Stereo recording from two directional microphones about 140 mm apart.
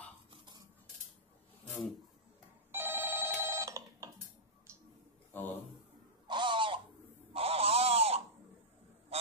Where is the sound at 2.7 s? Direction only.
15° right (ahead or behind).